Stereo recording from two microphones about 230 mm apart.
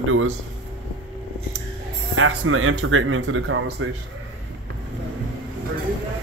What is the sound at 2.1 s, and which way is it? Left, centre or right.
Speech, right.